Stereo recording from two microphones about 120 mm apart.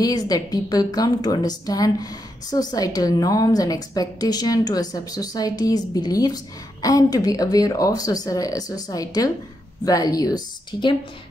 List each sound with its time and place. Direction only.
0.0 s a woman's voice: 30° left (ahead or behind)